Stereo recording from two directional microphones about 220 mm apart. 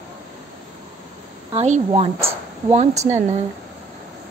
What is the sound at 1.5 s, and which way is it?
Speech, 30° right (ahead or behind).